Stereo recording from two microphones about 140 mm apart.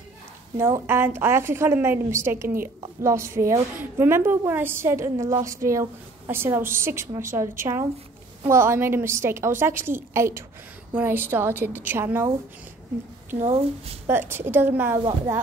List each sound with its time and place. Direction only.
0.6 s a woman's voice: 20° right (ahead or behind)
13.4 s speech: 45° right (ahead or behind)
14.0 s a woman's voice: 15° right (ahead or behind)